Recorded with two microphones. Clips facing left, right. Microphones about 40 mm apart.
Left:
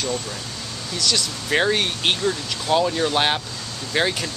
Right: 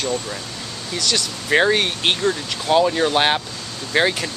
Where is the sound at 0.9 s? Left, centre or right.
Centre.